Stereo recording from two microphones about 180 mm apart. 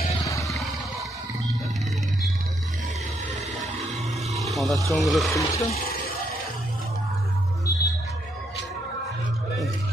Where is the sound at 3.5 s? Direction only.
Centre (ahead or behind).